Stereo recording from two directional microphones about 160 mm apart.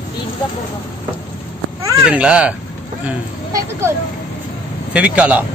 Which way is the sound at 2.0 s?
5° right (ahead or behind).